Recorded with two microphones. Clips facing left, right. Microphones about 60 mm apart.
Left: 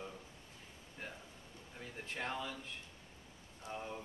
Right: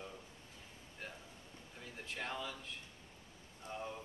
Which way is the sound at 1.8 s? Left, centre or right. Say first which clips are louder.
Left 2 dB; centre.